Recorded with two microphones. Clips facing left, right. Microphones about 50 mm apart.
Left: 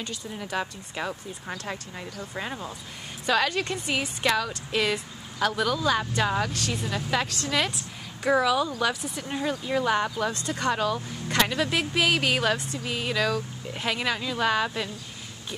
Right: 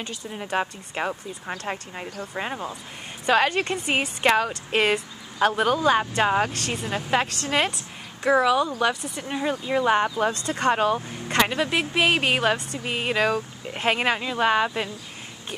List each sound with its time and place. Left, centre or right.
0.3 s speech: right
6.5 s speech: right
8.2 s speech: centre; by 11.0 s right
11.0 s speech: centre